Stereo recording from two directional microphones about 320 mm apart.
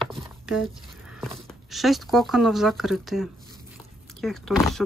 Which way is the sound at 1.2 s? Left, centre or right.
Centre.